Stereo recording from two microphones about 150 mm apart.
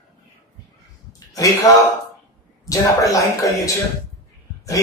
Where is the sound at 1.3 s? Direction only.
25° left (ahead or behind).